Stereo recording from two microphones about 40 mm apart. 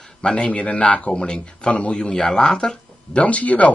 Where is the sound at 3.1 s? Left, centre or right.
Left.